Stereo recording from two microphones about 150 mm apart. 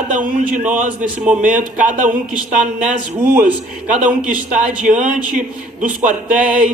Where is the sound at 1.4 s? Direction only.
60° right (ahead or behind).